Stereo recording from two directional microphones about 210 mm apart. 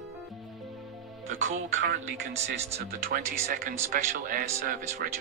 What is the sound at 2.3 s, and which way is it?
Speech, 35° right (ahead or behind).